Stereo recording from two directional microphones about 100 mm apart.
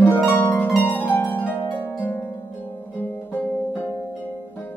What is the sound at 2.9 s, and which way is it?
Music, 20° left (ahead or behind).